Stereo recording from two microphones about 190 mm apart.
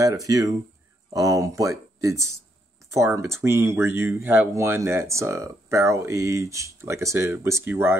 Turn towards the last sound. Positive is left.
turn(degrees=-10)  # may be behind; listen again after turning